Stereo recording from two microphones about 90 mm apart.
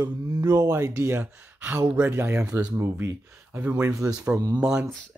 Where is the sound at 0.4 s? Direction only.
40° right (ahead or behind).